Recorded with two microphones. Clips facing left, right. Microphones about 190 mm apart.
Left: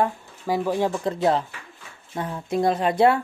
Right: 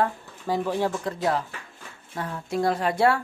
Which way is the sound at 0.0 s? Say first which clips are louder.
Left 2 dB; 15° left (ahead or behind).